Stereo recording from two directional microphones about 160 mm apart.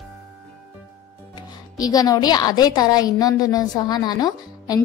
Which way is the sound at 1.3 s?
25° left (ahead or behind).